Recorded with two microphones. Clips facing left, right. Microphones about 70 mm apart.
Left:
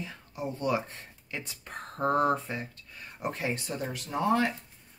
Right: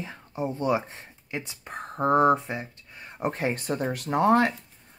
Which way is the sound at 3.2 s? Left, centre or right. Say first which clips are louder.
Right 5 dB; right.